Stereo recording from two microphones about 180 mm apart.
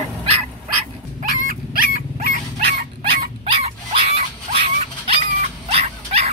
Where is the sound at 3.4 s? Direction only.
30° right (ahead or behind).